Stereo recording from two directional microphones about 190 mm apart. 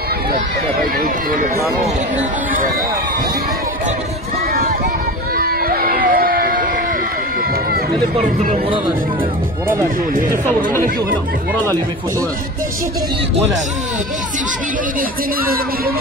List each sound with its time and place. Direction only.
0.9 s speech: 45° right (ahead or behind)
5.4 s a sound: 50° right (ahead or behind)
8.2 s speech: 40° right (ahead or behind)
10.1 s speech: 45° right (ahead or behind)
15.0 s speech: 50° right (ahead or behind)